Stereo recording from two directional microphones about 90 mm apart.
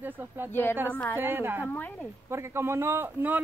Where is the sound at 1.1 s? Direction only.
25° right (ahead or behind).